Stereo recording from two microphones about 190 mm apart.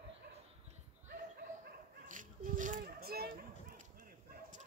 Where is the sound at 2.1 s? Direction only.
45° right (ahead or behind).